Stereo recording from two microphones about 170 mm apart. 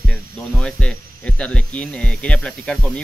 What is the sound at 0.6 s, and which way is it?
Speech, 5° left (ahead or behind).